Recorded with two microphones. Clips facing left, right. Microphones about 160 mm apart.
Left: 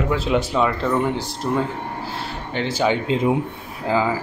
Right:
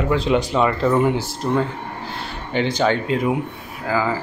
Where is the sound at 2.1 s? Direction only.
Centre (ahead or behind).